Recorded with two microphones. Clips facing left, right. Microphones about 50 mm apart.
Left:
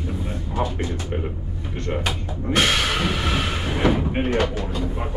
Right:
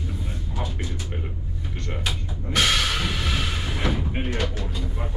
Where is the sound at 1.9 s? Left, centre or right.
Left.